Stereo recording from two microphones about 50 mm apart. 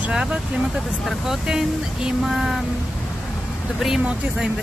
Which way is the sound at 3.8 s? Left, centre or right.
Centre.